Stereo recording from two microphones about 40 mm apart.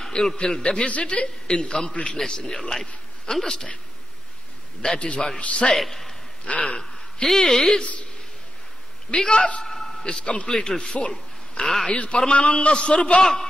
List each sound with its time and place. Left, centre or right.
0.0 s a man's voice: centre
0.6 s a man's voice: left
4.8 s a man's voice: left
5.8 s a man's voice: centre
6.4 s speech: left
6.8 s a sound: centre
7.3 s a man's voice: centre
9.1 s a man's voice: centre
9.6 s a sound: centre
10.0 s a man's voice: left
11.6 s a man's voice: centre
11.9 s a man's voice: left
13.2 s a man's voice: centre